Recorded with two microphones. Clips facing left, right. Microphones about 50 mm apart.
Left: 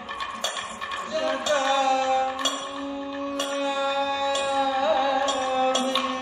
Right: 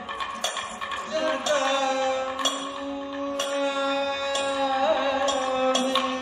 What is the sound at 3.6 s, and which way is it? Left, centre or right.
Music, right.